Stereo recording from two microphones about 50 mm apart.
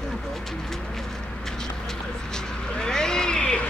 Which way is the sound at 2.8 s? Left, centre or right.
Centre.